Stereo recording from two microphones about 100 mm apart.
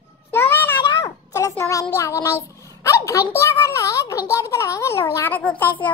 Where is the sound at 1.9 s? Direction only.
30° left (ahead or behind).